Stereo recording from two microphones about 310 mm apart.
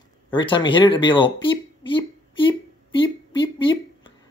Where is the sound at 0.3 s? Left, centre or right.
Centre.